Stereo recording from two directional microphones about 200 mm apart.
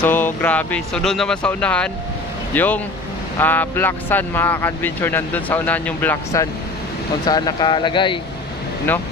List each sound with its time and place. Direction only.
0.0 s speech: 10° left (ahead or behind)
7.2 s speech: 20° left (ahead or behind)